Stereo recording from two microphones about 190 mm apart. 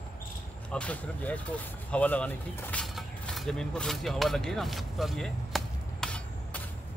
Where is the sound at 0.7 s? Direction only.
5° left (ahead or behind).